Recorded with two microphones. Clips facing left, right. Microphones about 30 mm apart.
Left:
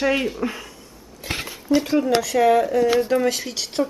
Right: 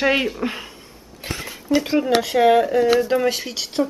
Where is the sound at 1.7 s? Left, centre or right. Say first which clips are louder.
Right 1 dB; right.